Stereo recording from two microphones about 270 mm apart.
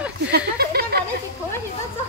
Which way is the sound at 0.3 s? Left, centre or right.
Right.